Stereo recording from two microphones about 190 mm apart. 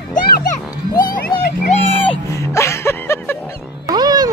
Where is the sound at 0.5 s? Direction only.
20° left (ahead or behind).